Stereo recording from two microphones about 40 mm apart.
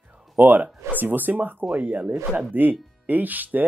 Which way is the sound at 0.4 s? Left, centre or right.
Right.